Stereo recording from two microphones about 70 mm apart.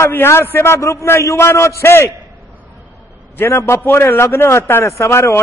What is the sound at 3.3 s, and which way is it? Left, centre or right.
A man's voice, left.